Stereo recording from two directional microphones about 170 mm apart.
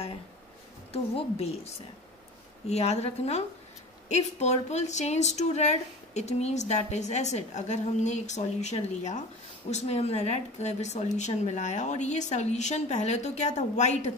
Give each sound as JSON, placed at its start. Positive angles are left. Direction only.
{"t": 0.9, "sound": "a woman's voice", "side_deg": 35}
{"t": 2.7, "sound": "a woman's voice", "side_deg": 40}